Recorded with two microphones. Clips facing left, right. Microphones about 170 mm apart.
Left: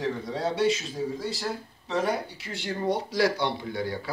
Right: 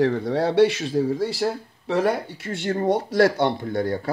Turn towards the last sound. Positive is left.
turn(degrees=-50)  # may be behind; listen again after turning